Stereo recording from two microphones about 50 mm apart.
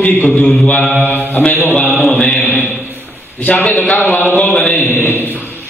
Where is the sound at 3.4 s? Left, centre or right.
Left.